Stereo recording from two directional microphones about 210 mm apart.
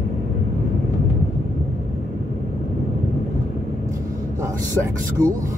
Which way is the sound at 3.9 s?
15° right (ahead or behind).